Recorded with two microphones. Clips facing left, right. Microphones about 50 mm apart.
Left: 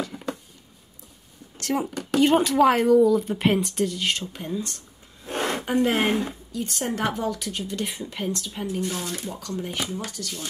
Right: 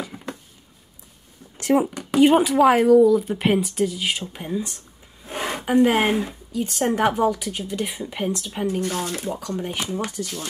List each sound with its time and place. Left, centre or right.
0.0 s a sound: centre
1.6 s speech: centre
5.2 s a sound: centre
6.5 s speech: centre
8.8 s speech: right
9.3 s speech: right
9.8 s speech: right